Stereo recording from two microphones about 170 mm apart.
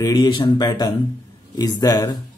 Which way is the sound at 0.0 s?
25° left (ahead or behind).